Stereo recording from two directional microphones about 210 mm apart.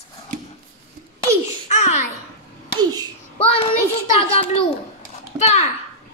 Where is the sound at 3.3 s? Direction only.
25° left (ahead or behind).